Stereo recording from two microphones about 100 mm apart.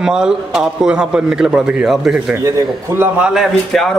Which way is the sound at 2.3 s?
25° right (ahead or behind).